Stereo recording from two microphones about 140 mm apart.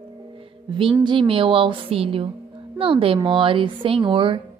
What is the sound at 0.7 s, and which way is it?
A woman's voice, 40° right (ahead or behind).